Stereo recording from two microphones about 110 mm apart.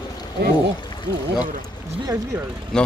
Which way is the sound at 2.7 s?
5° left (ahead or behind).